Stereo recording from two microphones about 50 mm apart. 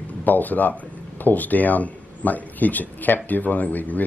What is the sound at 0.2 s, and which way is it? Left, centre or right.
Speech, left.